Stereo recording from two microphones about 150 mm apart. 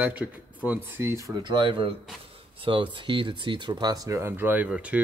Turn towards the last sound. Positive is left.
turn(degrees=-5)  # may be behind; listen again after turning